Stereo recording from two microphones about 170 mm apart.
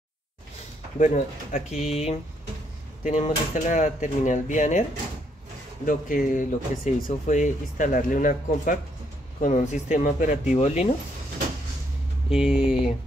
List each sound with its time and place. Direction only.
0.9 s speech: 45° left (ahead or behind)
5.9 s speech: 50° left (ahead or behind)
12.3 s speech: 5° right (ahead or behind)